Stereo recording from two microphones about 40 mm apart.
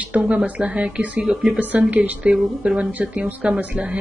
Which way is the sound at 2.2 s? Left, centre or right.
Right.